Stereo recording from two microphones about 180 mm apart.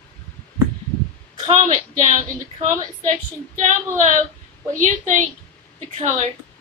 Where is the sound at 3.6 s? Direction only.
40° right (ahead or behind).